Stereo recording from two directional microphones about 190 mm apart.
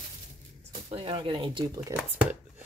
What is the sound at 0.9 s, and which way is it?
Speech, 30° right (ahead or behind).